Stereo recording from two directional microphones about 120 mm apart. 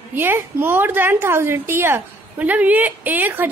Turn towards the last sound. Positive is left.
turn(degrees=-15)  # may be behind; listen again after turning